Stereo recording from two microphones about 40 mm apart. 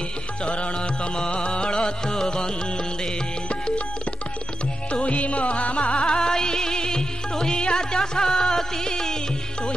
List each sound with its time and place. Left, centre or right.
1.3 s music: left
5.0 s music: left; by 9.1 s centre